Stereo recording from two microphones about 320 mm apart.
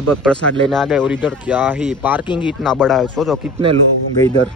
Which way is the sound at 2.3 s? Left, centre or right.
Centre.